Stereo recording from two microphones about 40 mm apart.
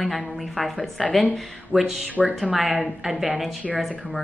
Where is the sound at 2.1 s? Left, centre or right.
Right.